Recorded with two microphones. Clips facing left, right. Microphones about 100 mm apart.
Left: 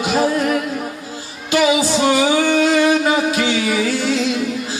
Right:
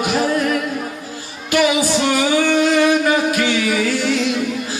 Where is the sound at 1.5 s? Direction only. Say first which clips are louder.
Left 1 dB; 25° left (ahead or behind).